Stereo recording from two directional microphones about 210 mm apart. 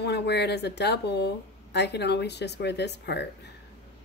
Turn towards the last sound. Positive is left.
turn(degrees=55)  # may be behind; listen again after turning